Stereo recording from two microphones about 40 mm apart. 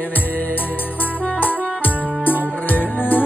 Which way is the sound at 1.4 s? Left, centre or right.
Left.